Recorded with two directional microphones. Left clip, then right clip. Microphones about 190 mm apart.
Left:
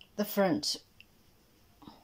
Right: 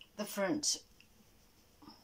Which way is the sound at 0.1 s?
30° left (ahead or behind).